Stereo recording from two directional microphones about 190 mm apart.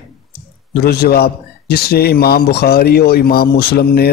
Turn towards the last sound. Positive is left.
turn(degrees=55)  # may be behind; listen again after turning